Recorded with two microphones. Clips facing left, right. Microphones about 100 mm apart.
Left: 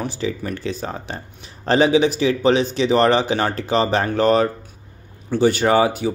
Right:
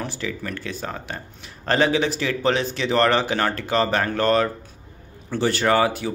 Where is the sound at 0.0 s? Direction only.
15° left (ahead or behind).